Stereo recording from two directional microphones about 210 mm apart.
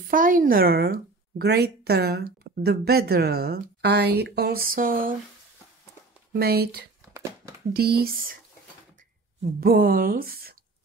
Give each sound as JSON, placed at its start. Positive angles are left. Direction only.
{"t": 0.1, "sound": "speech", "side_deg": -40}
{"t": 6.3, "sound": "speech", "side_deg": -45}
{"t": 9.4, "sound": "speech", "side_deg": -45}